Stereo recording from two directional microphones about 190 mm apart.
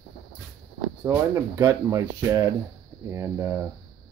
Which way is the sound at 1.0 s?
15° right (ahead or behind).